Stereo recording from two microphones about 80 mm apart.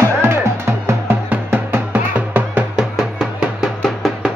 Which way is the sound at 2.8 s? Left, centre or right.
Centre.